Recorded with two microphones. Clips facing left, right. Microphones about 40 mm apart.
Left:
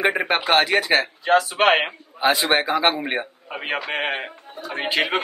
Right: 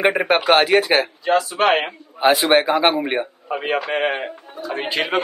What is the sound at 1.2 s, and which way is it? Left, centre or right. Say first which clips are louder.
Speech: even; left.